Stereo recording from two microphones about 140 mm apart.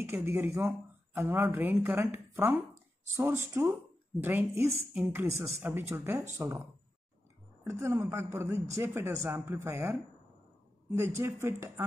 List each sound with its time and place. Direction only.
0.0 s speech: 20° right (ahead or behind)
7.6 s speech: 20° right (ahead or behind)